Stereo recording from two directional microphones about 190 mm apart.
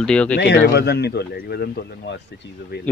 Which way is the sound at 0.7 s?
60° left (ahead or behind).